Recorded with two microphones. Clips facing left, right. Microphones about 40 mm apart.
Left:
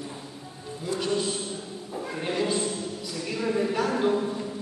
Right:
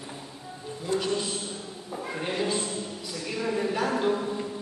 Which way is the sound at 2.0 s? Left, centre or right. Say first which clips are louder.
Left 1 dB; centre.